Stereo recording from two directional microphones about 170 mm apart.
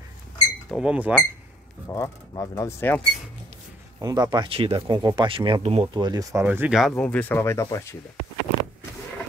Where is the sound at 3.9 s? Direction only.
20° right (ahead or behind).